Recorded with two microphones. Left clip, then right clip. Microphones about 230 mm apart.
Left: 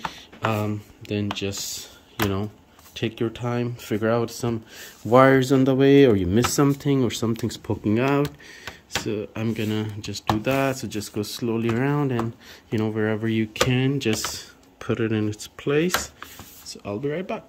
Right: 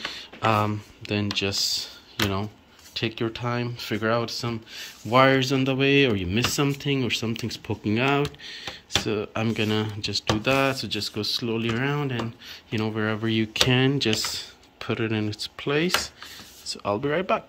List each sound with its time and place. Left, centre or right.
0.1 s speech: centre
2.9 s speech: centre